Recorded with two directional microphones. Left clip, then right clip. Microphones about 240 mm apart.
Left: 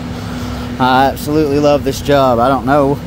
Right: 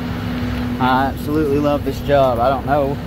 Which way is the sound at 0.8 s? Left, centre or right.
Left.